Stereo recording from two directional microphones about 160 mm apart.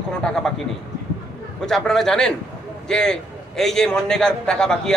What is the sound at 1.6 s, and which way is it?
A man's voice, centre (ahead or behind).